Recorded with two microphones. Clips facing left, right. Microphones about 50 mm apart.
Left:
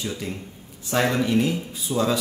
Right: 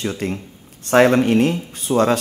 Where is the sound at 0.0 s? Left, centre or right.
Right.